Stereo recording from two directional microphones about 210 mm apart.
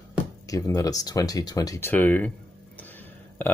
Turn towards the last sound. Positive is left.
turn(degrees=10)  # may be behind; listen again after turning